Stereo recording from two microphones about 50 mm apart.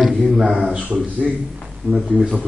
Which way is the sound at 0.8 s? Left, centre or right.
Right.